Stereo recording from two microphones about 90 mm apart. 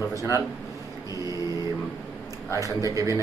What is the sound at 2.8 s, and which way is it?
Speech, 40° right (ahead or behind).